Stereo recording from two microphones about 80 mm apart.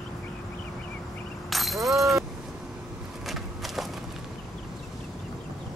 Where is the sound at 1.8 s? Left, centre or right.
Right.